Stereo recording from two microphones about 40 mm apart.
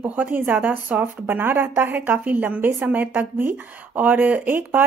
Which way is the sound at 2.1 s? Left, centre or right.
Right.